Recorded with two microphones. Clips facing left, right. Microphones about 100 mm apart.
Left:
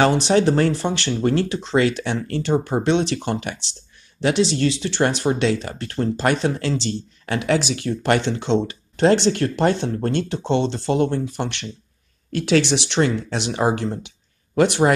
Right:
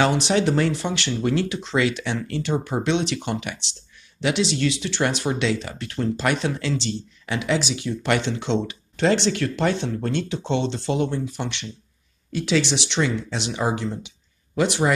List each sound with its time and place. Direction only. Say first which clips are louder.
0.0 s speech: left 3 dB; 40° left (ahead or behind)